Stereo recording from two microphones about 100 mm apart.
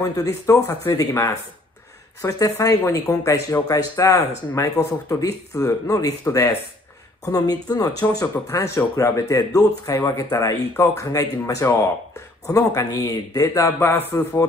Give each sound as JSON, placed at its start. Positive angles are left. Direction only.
{"t": 0.0, "sound": "speech", "side_deg": 35}